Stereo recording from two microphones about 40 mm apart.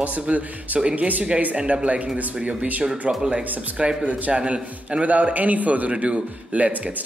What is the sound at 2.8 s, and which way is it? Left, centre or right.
Speech, centre.